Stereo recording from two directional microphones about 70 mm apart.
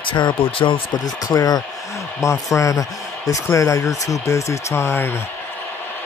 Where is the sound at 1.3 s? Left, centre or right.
Left.